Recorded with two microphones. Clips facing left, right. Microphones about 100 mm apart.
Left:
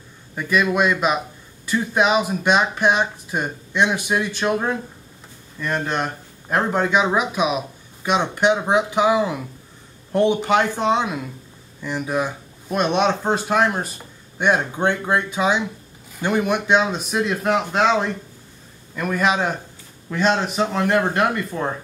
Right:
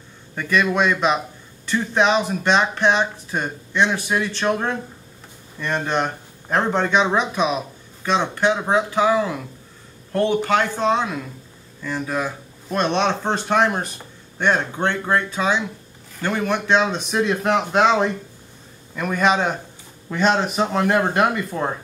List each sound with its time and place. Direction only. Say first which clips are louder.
0.4 s speech: even; 5° left (ahead or behind)
14.4 s a man's voice: left 1 dB; 10° left (ahead or behind)